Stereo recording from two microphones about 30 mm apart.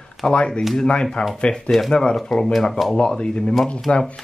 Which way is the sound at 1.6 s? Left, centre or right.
Centre.